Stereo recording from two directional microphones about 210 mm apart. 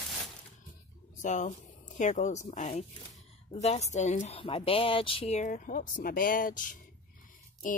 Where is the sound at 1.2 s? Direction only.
35° left (ahead or behind).